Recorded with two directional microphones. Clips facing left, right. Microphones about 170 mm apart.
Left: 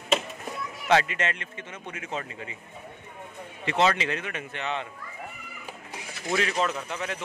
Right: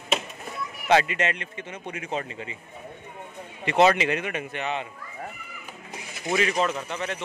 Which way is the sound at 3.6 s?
15° right (ahead or behind).